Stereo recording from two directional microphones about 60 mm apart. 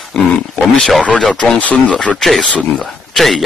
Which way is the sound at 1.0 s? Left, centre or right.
Centre.